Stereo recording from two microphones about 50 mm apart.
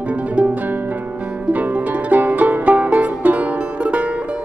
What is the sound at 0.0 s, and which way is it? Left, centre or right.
Music, right.